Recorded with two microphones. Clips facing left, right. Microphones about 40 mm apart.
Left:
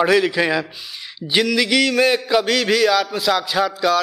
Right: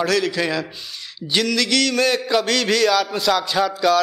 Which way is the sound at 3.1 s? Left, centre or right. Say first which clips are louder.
Even; centre.